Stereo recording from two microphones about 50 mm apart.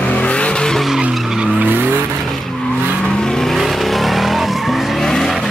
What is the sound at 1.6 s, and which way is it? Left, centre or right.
Vehicle, right.